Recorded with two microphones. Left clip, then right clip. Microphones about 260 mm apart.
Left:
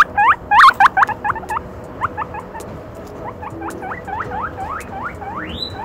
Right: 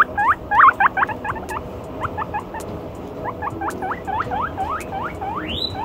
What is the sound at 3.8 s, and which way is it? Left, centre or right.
Rodents, right.